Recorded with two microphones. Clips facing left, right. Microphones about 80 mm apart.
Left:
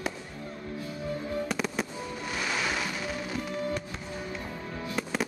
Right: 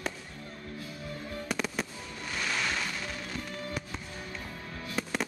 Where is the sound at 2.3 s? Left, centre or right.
Centre.